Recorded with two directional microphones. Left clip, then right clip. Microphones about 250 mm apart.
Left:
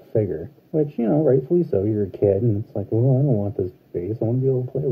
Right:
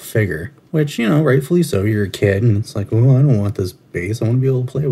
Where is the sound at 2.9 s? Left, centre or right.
Right.